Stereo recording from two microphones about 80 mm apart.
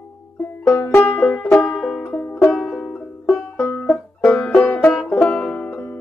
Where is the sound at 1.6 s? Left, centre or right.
Centre.